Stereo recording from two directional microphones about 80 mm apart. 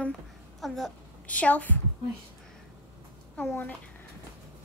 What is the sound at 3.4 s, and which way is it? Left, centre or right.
Speech, left.